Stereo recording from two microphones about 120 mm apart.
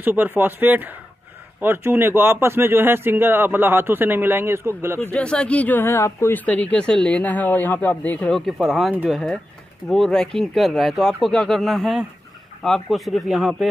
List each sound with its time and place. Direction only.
0.0 s a man's voice: 15° right (ahead or behind)
5.1 s speech: 10° left (ahead or behind)
8.3 s speech: centre (ahead or behind)